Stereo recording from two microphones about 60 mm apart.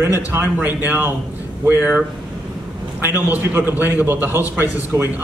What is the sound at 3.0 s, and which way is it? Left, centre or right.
A man's voice, right.